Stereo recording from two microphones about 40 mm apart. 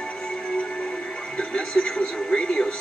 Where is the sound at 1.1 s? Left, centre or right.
Left.